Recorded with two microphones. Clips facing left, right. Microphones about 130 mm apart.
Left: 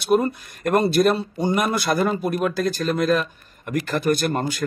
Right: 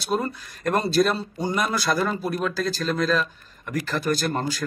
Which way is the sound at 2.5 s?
55° left (ahead or behind).